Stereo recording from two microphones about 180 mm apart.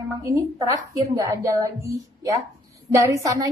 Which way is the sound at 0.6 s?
20° right (ahead or behind).